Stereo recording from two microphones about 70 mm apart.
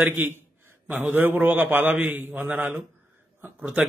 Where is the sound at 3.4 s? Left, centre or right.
Right.